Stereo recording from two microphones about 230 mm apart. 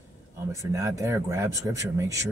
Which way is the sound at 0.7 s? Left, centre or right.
Centre.